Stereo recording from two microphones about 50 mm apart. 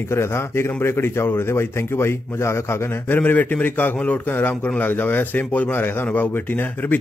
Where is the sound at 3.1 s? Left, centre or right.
Left.